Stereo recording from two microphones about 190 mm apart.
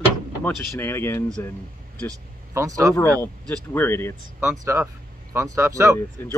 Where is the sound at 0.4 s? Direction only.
10° left (ahead or behind).